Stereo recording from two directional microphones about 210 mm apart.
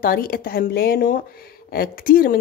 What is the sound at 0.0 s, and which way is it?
A woman's voice, 45° left (ahead or behind).